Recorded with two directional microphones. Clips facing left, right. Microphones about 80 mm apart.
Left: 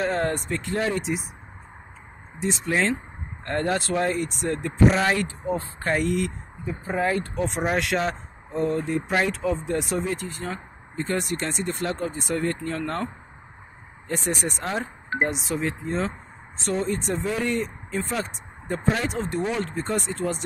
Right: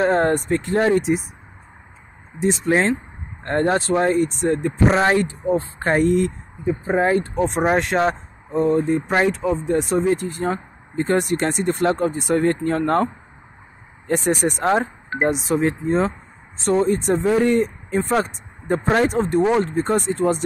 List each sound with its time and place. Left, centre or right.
0.0 s speech: right
2.4 s speech: right
8.7 s speech: right
9.3 s speech: centre
10.1 s speech: right
14.0 s speech: right